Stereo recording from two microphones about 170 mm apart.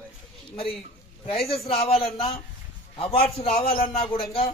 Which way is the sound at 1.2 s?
35° left (ahead or behind).